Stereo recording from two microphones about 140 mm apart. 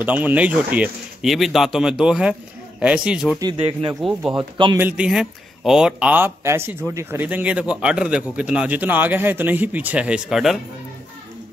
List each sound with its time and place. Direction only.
0.0 s a man's voice: 10° right (ahead or behind)
3.3 s speech: 30° right (ahead or behind)
4.0 s a man's voice: 5° right (ahead or behind)
4.4 s a man's voice: 35° right (ahead or behind)
4.7 s a man's voice: 10° right (ahead or behind)